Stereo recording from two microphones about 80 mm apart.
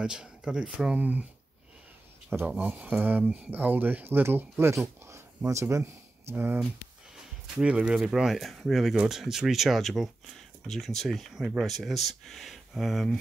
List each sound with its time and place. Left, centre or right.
0.0 s speech: centre
2.6 s speech: centre
7.6 s speech: centre